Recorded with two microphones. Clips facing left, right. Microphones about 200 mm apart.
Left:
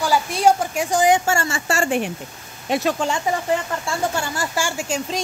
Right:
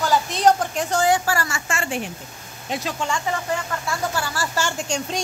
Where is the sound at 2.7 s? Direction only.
65° left (ahead or behind).